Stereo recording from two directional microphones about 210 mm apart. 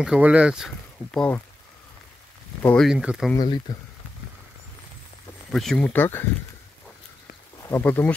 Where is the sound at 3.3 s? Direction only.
20° left (ahead or behind).